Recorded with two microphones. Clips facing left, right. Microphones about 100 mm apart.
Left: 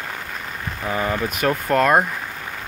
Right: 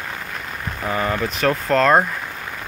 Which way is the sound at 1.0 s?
10° left (ahead or behind).